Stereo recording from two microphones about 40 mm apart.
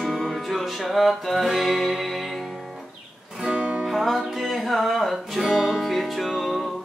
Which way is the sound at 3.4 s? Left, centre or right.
Right.